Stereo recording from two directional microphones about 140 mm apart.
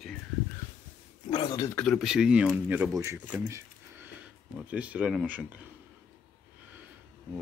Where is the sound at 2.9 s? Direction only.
20° right (ahead or behind).